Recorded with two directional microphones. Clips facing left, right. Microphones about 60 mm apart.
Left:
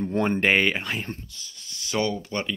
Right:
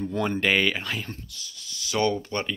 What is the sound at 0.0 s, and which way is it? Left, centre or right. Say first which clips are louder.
Speech: left 2 dB; left.